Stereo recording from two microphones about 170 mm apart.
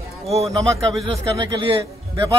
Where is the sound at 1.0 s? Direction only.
30° right (ahead or behind).